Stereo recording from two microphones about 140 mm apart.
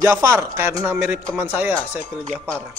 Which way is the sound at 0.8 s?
10° right (ahead or behind).